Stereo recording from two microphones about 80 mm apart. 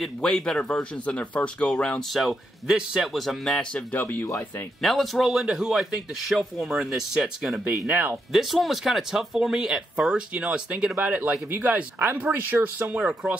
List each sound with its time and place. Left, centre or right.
0.0 s speech: centre
2.1 s speech: centre
3.7 s speech: left
4.8 s speech: centre
7.8 s speech: right
8.3 s speech: centre